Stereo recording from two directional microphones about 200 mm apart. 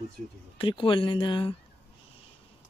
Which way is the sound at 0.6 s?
25° left (ahead or behind).